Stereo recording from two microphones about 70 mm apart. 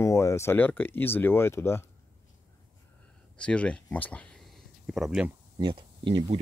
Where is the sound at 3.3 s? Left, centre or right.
Centre.